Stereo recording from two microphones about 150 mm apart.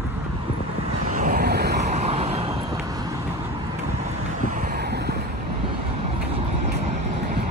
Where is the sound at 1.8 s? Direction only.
50° right (ahead or behind).